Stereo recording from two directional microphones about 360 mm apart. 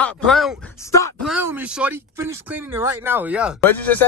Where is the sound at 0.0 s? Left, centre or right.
Centre.